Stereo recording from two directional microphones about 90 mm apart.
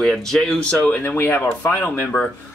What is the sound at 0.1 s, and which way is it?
Speech, centre (ahead or behind).